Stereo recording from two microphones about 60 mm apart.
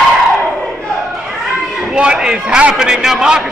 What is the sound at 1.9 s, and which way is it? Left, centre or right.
Speech, centre.